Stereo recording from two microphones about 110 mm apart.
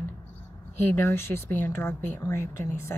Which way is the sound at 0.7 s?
20° left (ahead or behind).